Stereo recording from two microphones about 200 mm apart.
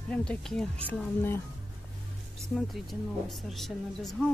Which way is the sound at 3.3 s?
Centre (ahead or behind).